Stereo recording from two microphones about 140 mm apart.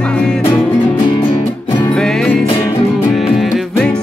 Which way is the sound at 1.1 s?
40° left (ahead or behind).